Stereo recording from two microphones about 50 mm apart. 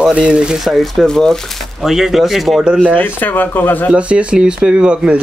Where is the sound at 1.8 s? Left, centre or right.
Centre.